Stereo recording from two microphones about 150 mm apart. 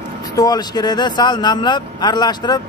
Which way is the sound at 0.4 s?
25° left (ahead or behind).